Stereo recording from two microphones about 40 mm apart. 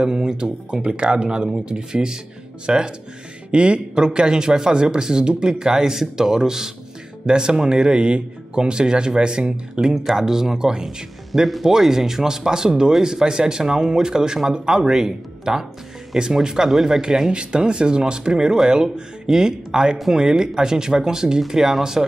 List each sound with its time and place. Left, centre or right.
0.0 s a man's voice: centre
11.4 s a man's voice: centre
17.3 s a man's voice: right